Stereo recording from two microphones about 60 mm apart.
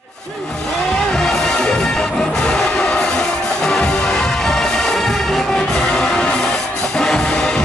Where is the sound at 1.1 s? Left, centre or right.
Centre.